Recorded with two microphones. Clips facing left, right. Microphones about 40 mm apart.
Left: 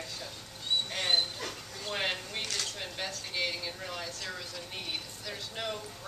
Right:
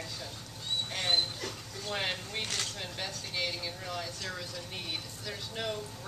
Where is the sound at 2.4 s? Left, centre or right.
Right.